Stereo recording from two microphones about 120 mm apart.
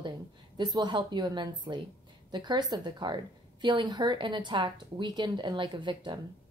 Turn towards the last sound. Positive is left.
turn(degrees=-40)  # may be behind; listen again after turning